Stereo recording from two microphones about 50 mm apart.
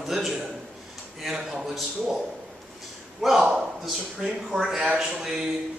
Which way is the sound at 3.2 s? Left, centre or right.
Centre.